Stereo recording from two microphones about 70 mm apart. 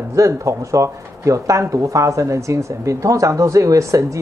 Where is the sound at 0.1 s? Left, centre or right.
Right.